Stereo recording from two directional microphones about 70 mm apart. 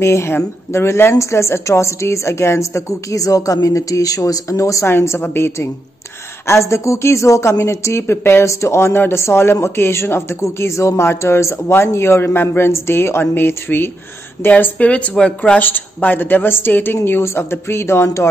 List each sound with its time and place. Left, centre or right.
0.0 s a woman's voice: left
4.9 s speech: left; by 15.6 s centre
15.6 s speech: left